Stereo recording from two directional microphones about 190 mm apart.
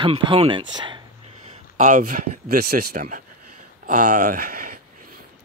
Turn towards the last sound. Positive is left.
turn(degrees=-50)  # may be behind; listen again after turning